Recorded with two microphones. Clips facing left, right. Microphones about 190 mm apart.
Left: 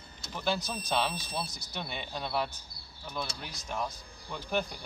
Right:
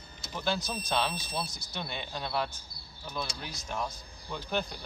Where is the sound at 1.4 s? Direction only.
35° left (ahead or behind).